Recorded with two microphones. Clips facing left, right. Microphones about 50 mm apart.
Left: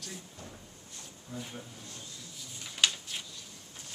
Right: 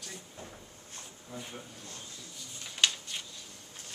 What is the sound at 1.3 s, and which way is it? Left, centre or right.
Speech, centre.